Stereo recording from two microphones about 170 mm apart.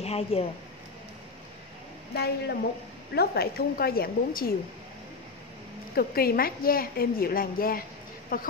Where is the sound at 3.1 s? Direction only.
70° left (ahead or behind).